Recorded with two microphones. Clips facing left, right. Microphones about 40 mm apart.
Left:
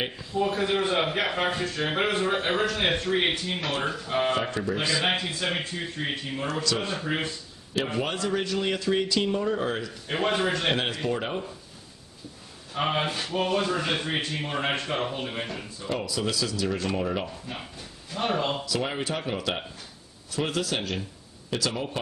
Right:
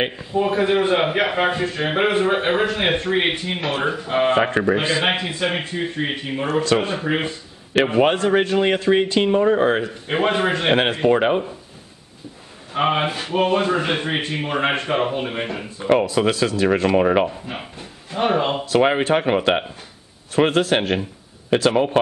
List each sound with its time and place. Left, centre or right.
0.0 s a man's voice: right
4.7 s a man's voice: right
6.6 s speech: right
6.9 s a man's voice: right
8.0 s speech: right
12.7 s a man's voice: right
16.0 s speech: right
17.3 s speech: right
18.7 s speech: right